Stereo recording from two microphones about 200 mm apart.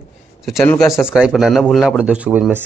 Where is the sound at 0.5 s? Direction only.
Centre (ahead or behind).